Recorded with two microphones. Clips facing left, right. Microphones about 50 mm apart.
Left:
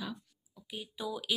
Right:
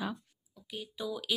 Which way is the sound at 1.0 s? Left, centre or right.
Centre.